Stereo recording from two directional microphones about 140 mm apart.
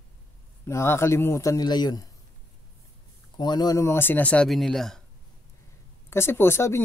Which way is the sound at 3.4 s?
30° left (ahead or behind).